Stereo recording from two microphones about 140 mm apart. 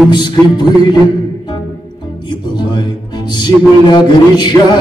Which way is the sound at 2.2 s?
30° left (ahead or behind).